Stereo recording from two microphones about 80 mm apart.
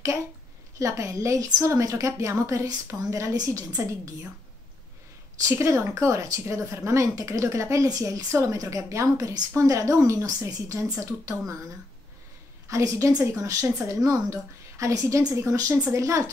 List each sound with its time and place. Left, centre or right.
0.7 s a woman's voice: right
5.4 s a woman's voice: right
12.6 s a woman's voice: right